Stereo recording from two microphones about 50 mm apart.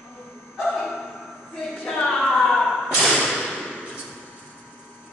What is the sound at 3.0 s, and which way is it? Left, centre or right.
Whip, centre.